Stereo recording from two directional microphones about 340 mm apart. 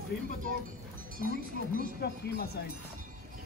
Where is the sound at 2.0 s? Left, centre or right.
Left.